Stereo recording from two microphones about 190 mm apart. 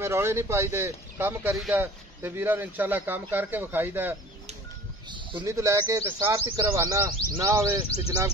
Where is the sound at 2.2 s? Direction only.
10° right (ahead or behind).